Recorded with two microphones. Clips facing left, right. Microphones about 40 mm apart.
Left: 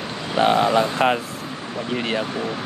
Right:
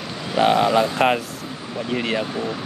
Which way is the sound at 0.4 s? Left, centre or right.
Centre.